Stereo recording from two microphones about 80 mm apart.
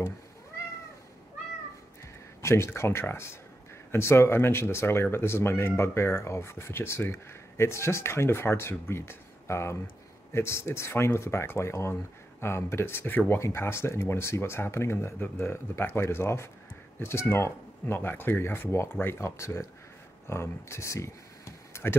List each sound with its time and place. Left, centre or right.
2.4 s speech: left